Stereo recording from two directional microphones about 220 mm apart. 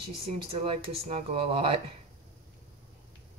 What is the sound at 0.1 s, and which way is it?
Speech, 25° right (ahead or behind).